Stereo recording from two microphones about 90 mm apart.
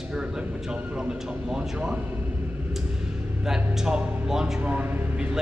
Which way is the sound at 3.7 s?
10° right (ahead or behind).